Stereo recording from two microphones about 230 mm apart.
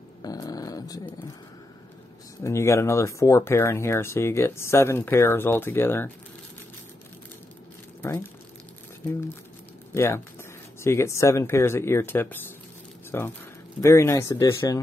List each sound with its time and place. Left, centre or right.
0.2 s dog: centre
2.4 s speech: centre
8.0 s speech: centre
9.9 s speech: centre